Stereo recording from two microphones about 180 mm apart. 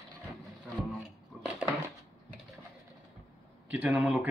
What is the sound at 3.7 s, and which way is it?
Speech, 5° right (ahead or behind).